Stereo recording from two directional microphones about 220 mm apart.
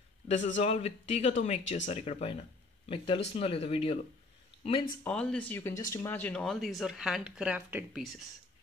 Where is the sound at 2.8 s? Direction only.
25° left (ahead or behind).